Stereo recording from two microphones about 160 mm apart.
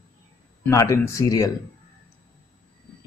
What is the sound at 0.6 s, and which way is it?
Speech, 20° left (ahead or behind).